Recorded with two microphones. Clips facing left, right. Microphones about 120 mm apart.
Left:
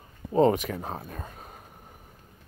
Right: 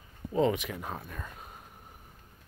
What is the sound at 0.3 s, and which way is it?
Speech, 40° left (ahead or behind).